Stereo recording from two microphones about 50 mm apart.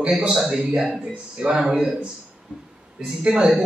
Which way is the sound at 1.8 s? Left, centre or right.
Centre.